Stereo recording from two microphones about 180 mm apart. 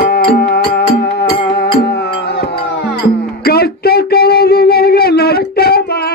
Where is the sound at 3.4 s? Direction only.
60° left (ahead or behind).